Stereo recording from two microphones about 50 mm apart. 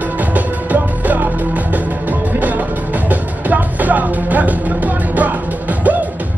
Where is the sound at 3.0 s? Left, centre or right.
Right.